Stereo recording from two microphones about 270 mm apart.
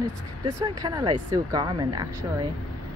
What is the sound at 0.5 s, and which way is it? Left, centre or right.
Speech, centre.